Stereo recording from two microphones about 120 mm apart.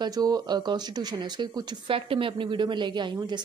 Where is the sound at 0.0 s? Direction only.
30° right (ahead or behind).